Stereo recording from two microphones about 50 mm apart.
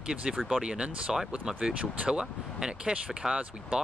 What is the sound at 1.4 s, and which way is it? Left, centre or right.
Speech, centre.